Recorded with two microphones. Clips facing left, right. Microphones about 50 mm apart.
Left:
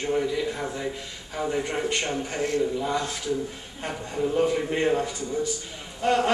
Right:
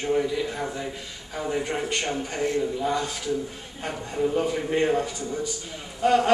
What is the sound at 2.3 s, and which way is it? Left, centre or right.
Speech, right.